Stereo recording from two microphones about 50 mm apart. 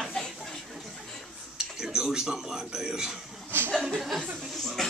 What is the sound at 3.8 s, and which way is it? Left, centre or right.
Speech, centre.